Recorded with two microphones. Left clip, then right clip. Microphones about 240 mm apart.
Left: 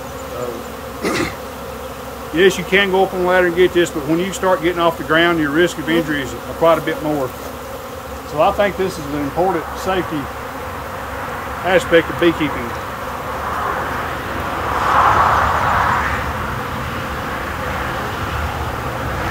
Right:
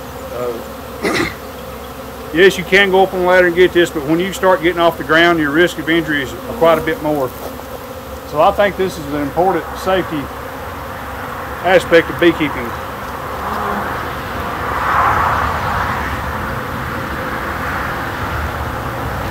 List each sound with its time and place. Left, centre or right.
1.0 s bee: centre
2.3 s speech: centre
8.4 s speech: centre
11.6 s speech: centre
14.8 s vehicle: left